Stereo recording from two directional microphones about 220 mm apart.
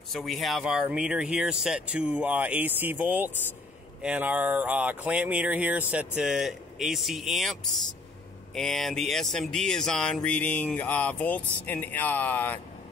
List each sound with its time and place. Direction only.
0.1 s speech: centre (ahead or behind)
8.5 s speech: centre (ahead or behind)